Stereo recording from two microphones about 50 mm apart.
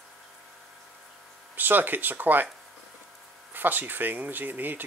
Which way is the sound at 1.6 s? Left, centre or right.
Right.